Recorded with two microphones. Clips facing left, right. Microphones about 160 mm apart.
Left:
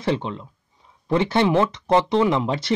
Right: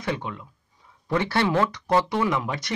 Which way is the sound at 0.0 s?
25° left (ahead or behind).